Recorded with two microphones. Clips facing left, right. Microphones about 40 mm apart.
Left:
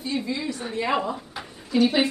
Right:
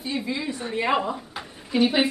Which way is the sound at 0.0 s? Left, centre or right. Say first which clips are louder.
Even; centre.